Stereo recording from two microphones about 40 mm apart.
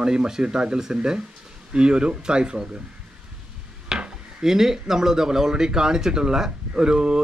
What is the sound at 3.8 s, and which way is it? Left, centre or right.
Speech, centre.